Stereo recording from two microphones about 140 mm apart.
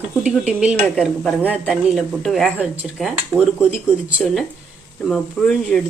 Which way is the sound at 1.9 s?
Centre (ahead or behind).